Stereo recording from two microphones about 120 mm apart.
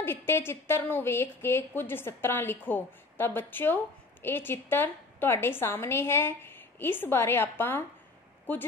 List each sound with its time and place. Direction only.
0.0 s a woman's voice: 20° left (ahead or behind)